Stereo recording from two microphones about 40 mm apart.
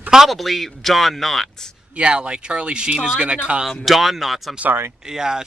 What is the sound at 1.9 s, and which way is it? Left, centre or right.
Speech, right.